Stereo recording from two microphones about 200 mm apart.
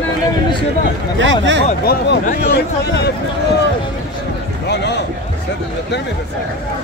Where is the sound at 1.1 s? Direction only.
70° right (ahead or behind).